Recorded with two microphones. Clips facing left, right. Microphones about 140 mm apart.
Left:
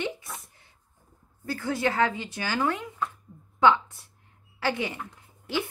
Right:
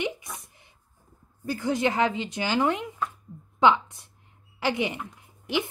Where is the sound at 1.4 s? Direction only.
20° right (ahead or behind).